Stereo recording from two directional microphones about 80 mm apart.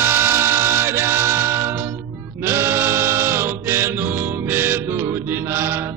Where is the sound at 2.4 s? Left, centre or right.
Right.